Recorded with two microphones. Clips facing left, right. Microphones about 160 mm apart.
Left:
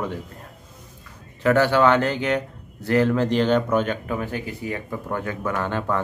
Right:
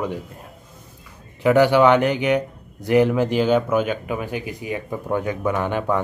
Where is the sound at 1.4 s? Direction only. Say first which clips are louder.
Right 3 dB; 15° right (ahead or behind).